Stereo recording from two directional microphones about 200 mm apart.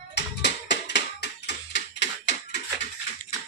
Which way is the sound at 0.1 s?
60° left (ahead or behind).